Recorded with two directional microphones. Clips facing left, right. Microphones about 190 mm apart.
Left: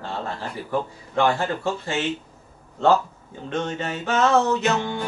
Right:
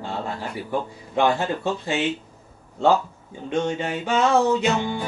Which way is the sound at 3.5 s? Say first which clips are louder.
Right 3 dB; 15° right (ahead or behind).